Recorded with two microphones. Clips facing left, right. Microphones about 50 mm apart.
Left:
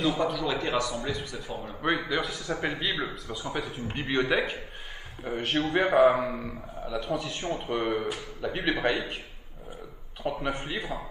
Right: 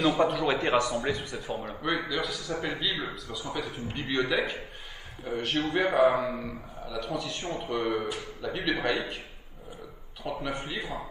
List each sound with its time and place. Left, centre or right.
0.0 s a man's voice: right
1.8 s a man's voice: left
10.2 s a man's voice: left